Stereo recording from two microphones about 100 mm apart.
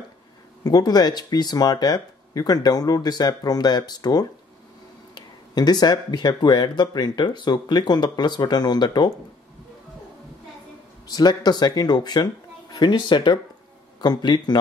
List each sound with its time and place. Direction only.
0.7 s speech: 40° left (ahead or behind)
11.1 s speech: 45° left (ahead or behind)